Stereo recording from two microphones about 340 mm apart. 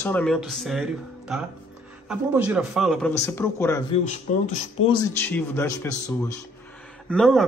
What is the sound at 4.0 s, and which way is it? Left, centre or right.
Speech, centre.